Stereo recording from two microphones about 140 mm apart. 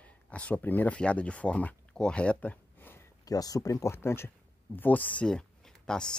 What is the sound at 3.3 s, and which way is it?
Speech, 25° left (ahead or behind).